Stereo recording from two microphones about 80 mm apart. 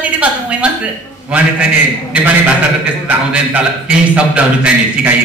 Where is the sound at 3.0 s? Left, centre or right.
Centre.